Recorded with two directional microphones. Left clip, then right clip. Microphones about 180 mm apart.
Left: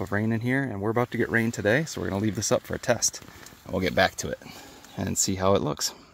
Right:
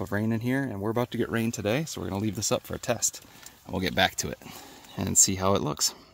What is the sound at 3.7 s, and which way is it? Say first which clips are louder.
Speech: left 2 dB; 10° right (ahead or behind).